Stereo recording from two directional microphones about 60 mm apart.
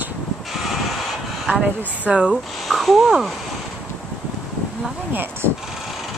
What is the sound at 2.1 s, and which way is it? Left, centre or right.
Speech, right.